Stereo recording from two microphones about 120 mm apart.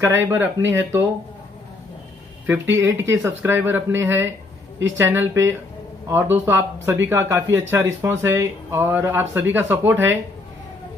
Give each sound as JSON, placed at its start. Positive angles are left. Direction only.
{"t": 0.0, "sound": "speech", "side_deg": -20}
{"t": 2.4, "sound": "speech", "side_deg": -20}